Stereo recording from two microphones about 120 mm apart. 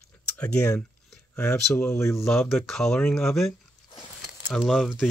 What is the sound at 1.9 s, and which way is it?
Speech, 25° left (ahead or behind).